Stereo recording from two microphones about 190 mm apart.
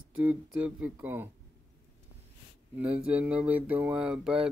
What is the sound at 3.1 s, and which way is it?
Mantra, 5° right (ahead or behind).